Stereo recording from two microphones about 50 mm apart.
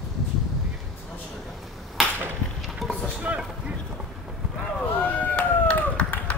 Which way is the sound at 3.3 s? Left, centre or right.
Right.